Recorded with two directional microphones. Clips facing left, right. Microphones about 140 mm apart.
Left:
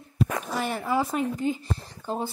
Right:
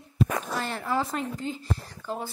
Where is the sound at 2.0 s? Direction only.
30° left (ahead or behind).